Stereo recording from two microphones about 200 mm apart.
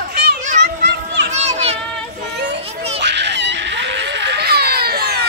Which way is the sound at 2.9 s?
60° right (ahead or behind).